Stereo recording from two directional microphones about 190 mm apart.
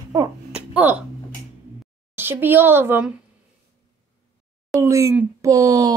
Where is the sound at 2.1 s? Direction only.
10° right (ahead or behind).